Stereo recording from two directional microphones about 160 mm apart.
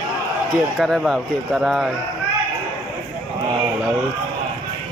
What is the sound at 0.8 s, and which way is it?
Speech, centre (ahead or behind).